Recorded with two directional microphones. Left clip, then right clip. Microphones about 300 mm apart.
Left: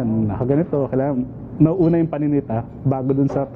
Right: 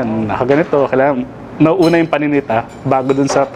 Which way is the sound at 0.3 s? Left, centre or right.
Centre.